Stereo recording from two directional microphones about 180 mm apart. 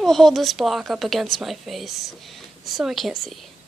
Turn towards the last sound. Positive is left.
turn(degrees=0)  # may be behind; listen again after turning